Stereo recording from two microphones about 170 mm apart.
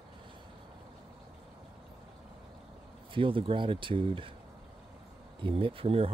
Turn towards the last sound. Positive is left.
turn(degrees=-35)  # may be behind; listen again after turning